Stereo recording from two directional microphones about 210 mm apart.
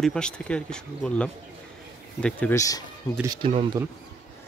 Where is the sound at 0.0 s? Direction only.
5° left (ahead or behind).